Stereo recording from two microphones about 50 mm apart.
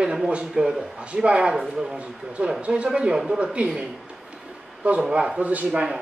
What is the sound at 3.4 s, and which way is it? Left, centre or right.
A man's voice, right.